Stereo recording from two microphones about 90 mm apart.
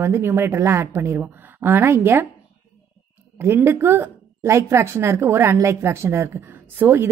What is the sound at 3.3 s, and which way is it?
A woman's voice, 25° right (ahead or behind).